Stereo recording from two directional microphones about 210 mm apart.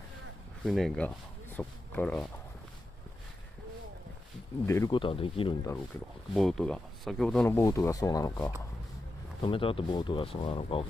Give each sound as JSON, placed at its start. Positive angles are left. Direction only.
{"t": 0.7, "sound": "speech", "side_deg": 0}
{"t": 4.6, "sound": "speech", "side_deg": 15}
{"t": 6.3, "sound": "speech", "side_deg": 0}